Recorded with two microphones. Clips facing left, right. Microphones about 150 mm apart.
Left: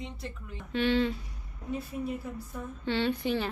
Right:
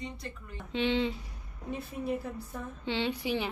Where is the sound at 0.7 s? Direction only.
20° right (ahead or behind).